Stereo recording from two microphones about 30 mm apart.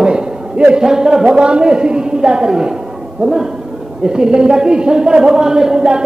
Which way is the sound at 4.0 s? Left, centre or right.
Right.